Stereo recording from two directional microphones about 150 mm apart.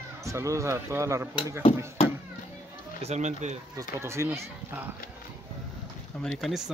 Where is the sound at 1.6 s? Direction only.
45° left (ahead or behind).